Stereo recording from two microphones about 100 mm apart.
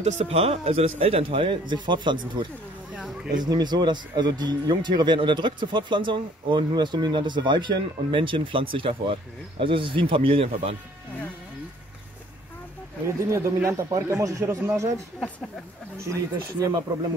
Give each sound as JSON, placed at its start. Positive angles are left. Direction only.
{"t": 0.0, "sound": "a man's voice", "side_deg": -85}
{"t": 13.0, "sound": "speech", "side_deg": -30}
{"t": 16.0, "sound": "speech", "side_deg": -35}